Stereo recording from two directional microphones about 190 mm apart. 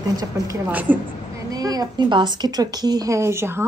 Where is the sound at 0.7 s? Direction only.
10° right (ahead or behind).